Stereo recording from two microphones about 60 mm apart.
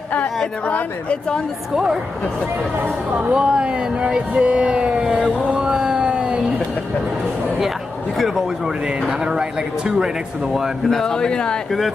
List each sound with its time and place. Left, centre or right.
0.7 s speech: left
2.8 s speech: right
3.3 s speech: centre
5.2 s a sound: centre
8.2 s speech: centre